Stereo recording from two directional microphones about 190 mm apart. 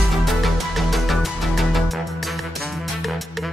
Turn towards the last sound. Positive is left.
turn(degrees=0)  # may be behind; listen again after turning